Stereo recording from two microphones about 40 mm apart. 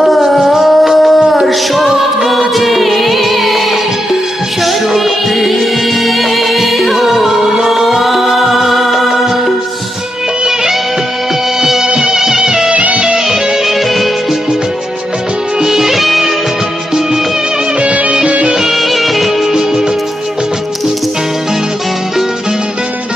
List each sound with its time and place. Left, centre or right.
0.0 s a sound: centre
1.5 s music: centre
4.6 s music: centre
11.6 s music: centre
12.7 s music: right
13.3 s music: centre
15.6 s music: centre
17.7 s music: right
18.7 s music: centre